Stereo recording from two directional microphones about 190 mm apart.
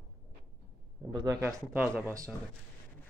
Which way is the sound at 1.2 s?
5° right (ahead or behind).